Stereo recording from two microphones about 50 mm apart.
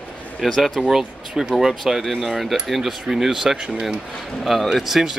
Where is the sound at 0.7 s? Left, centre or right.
Centre.